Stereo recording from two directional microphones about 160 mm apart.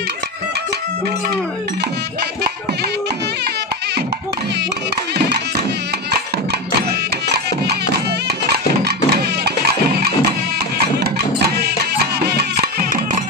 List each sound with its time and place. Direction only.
6.9 s music: 90° right
8.8 s music: 90° right
11.3 s music: 90° right